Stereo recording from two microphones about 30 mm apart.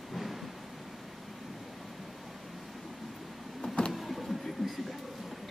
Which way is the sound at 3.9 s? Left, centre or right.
Centre.